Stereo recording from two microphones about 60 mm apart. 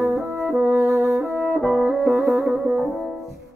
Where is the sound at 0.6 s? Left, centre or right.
Right.